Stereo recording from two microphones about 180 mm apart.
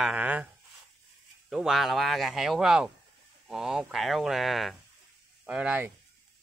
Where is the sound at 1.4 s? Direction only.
Centre (ahead or behind).